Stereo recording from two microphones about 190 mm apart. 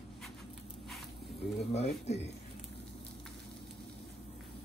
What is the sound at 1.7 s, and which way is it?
Speech, 35° left (ahead or behind).